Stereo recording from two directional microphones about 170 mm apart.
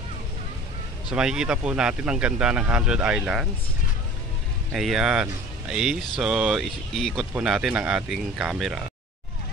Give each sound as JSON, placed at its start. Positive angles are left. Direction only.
{"t": 1.1, "sound": "speech", "side_deg": -5}
{"t": 4.7, "sound": "speech", "side_deg": 0}